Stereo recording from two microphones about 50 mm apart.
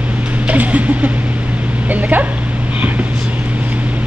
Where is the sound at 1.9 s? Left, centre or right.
Right.